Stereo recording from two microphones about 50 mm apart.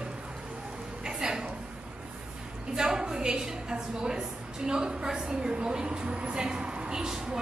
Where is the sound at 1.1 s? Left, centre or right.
Centre.